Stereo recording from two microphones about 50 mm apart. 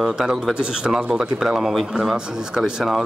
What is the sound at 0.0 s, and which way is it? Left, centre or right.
Speech, centre.